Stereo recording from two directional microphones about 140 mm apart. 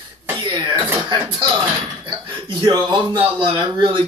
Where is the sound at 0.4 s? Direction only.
30° right (ahead or behind).